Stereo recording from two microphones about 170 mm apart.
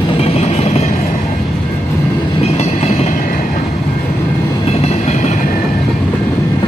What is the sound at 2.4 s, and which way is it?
Train, 40° left (ahead or behind).